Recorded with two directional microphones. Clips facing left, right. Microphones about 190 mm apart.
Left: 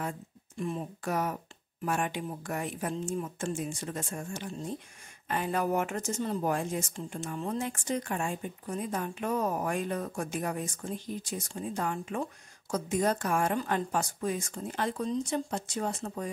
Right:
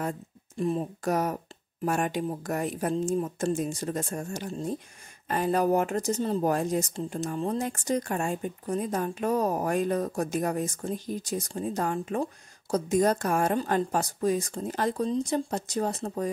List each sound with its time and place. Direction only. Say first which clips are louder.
0.6 s speech: right 6 dB; 35° right (ahead or behind)